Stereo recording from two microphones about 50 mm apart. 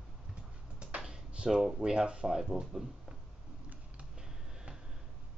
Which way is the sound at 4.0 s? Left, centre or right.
Centre.